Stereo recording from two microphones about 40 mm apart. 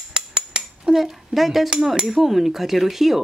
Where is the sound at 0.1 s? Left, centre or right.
Right.